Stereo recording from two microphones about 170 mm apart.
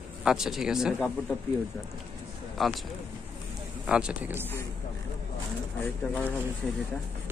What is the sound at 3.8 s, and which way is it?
Speech, 5° right (ahead or behind).